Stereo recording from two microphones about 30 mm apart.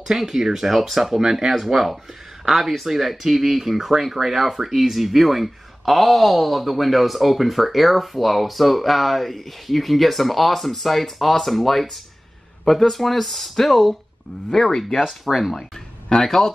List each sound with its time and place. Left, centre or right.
0.0 s speech: centre
0.7 s speech: centre
1.1 s speech: centre
15.0 s speech: centre
16.3 s speech: centre